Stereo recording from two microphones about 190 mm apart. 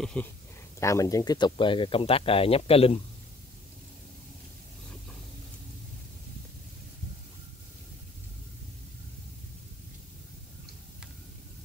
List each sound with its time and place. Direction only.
0.0 s speech: 5° left (ahead or behind)
0.7 s speech: 15° left (ahead or behind); by 3.0 s 30° left (ahead or behind)